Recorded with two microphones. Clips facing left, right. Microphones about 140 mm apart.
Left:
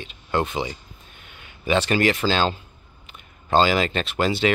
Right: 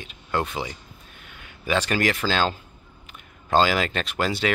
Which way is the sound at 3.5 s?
5° right (ahead or behind).